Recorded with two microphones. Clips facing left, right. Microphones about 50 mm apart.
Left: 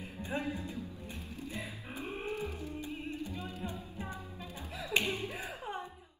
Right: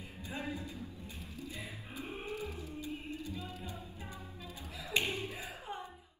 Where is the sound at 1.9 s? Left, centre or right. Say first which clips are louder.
Left 3 dB; left.